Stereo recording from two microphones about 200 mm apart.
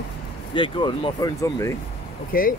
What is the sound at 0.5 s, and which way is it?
Speech, 25° left (ahead or behind).